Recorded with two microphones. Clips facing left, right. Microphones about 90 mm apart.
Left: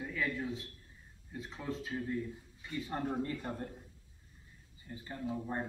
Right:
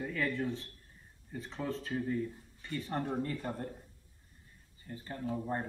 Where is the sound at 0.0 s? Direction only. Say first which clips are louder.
Right 3 dB; 5° left (ahead or behind).